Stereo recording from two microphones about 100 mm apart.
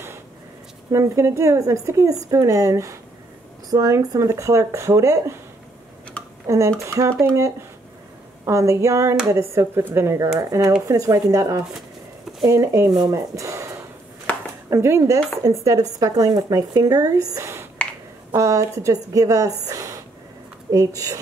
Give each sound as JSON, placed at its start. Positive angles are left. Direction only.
{"t": 0.9, "sound": "speech", "side_deg": -30}
{"t": 6.4, "sound": "speech", "side_deg": -30}
{"t": 8.5, "sound": "speech", "side_deg": -30}
{"t": 14.3, "sound": "a sound", "side_deg": 15}
{"t": 14.7, "sound": "speech", "side_deg": -30}